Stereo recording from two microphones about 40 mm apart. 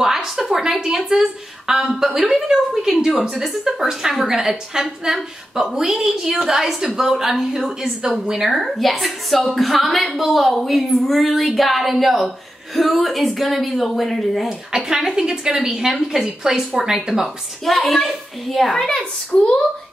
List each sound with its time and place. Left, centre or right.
0.0 s a woman's voice: centre
14.7 s a woman's voice: right
15.9 s a woman's voice: centre
17.6 s speech: centre
19.3 s a child's voice: centre